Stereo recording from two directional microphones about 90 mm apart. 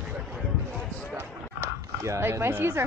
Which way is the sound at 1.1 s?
30° right (ahead or behind).